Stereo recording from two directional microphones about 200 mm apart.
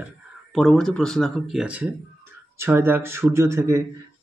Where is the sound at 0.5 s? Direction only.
Centre (ahead or behind); by 3.8 s 15° right (ahead or behind).